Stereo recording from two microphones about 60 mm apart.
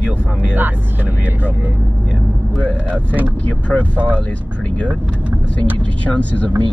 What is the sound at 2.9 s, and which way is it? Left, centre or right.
Speech, right.